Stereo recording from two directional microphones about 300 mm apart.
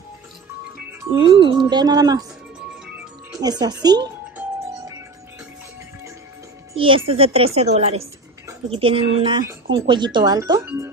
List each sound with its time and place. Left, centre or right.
1.1 s speech: centre
3.3 s music: centre
6.7 s a child's voice: centre